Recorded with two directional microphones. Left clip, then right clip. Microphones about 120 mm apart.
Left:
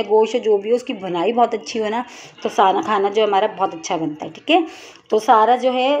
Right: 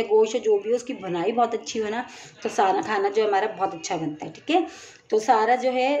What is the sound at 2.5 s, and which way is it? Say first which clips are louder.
A woman's voice: left 6 dB; 25° left (ahead or behind).